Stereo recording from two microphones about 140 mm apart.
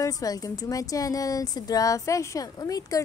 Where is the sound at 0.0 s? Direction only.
25° left (ahead or behind).